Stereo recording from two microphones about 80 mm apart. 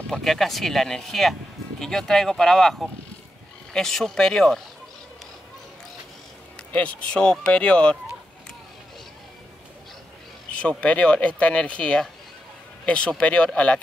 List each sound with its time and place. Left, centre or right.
0.1 s speech: centre
6.7 s speech: centre
10.6 s speech: centre